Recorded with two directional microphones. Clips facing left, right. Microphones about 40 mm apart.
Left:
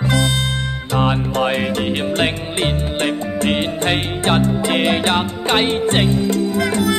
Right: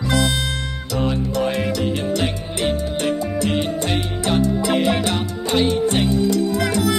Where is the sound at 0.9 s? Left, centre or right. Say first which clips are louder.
Left 3 dB; left.